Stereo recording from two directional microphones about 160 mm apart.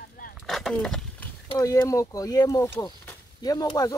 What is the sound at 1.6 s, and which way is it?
Speech, 20° left (ahead or behind).